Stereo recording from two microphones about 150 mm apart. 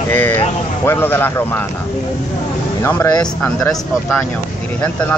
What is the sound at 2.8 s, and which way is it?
Speech, 15° left (ahead or behind).